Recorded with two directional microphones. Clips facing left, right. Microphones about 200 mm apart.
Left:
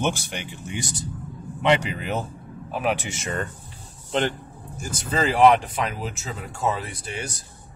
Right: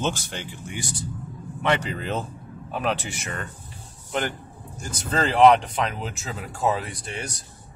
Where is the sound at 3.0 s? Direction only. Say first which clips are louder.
Left 4 dB; 25° left (ahead or behind).